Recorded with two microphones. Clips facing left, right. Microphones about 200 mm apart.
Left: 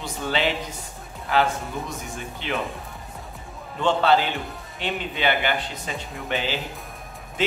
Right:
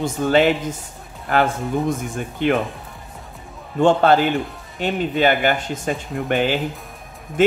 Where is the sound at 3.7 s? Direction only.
50° right (ahead or behind).